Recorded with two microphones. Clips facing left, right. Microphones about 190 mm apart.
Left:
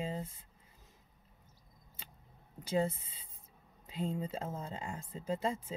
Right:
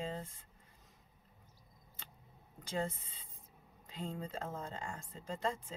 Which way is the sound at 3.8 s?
5° left (ahead or behind).